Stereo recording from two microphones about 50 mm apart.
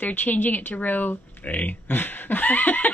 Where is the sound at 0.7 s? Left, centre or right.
Left.